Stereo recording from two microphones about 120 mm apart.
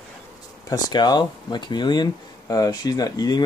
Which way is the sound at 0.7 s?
35° left (ahead or behind).